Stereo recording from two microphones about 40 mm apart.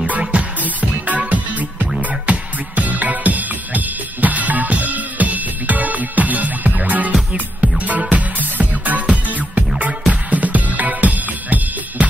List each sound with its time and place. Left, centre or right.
0.3 s music: right